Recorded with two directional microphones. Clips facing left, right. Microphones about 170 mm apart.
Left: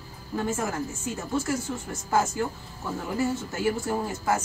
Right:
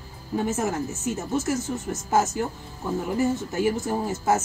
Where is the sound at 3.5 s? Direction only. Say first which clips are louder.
Right 2 dB; 20° right (ahead or behind).